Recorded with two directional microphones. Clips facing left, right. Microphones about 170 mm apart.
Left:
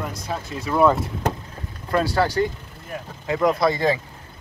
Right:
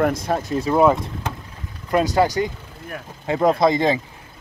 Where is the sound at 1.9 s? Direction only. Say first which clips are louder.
Right 2 dB; 20° right (ahead or behind).